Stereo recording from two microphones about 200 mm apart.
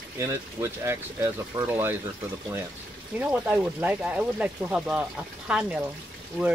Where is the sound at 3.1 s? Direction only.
10° right (ahead or behind).